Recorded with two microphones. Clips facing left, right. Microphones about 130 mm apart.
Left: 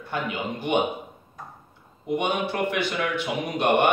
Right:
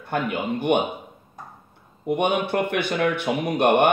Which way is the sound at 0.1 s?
55° right (ahead or behind).